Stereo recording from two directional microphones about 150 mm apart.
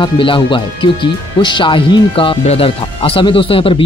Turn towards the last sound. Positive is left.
turn(degrees=35)  # may be behind; listen again after turning